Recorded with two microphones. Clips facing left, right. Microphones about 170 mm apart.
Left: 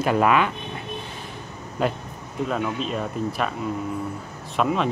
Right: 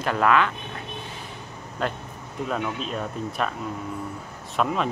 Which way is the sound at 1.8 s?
10° left (ahead or behind).